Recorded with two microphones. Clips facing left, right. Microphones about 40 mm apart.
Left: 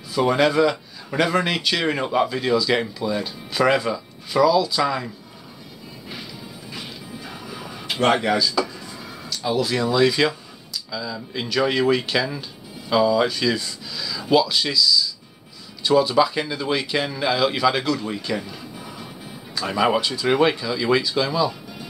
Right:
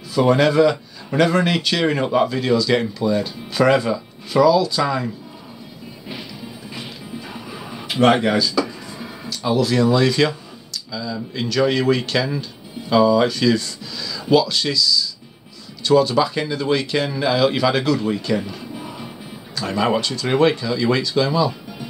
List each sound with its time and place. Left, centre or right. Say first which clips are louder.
0.1 s speech: right 3 dB; centre
6.7 s music: right 2 dB; centre
7.4 s music: right 2 dB; centre
8.1 s speech: right 1 dB; centre
8.4 s speech: right 2 dB; centre
18.8 s music: right 4 dB; centre
19.5 s speech: even; centre